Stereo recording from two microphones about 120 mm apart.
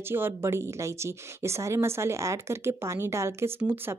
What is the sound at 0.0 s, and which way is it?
A woman's voice, 20° right (ahead or behind).